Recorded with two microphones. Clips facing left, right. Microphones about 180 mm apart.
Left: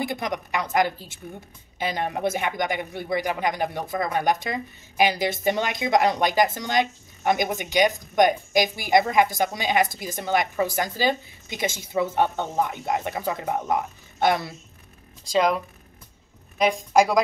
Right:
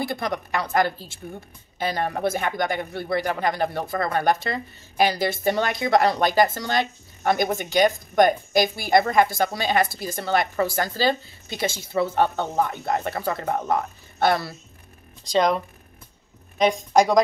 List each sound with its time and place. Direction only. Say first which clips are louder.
0.0 s a woman's voice: right 1 dB; 15° left (ahead or behind)
15.2 s a woman's voice: right 1 dB; 5° left (ahead or behind)